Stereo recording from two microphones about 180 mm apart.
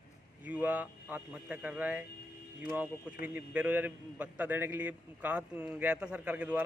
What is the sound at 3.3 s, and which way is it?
A man's voice, 10° right (ahead or behind).